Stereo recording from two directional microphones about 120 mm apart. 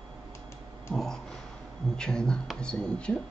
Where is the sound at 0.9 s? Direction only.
5° left (ahead or behind).